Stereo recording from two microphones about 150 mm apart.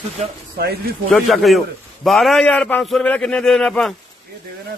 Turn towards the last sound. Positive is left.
turn(degrees=5)  # may be behind; listen again after turning